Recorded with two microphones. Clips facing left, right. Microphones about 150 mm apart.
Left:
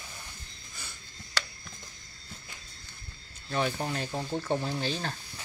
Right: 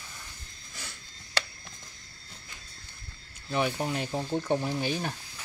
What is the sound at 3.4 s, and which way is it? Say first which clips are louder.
Speech: right 2 dB; 10° right (ahead or behind).